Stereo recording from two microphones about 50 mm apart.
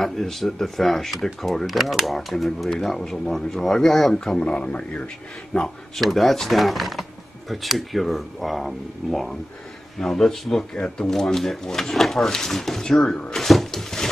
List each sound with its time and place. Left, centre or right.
0.0 s speech: centre
4.5 s a man's voice: left
5.9 s speech: centre
13.3 s cupboard open or close: centre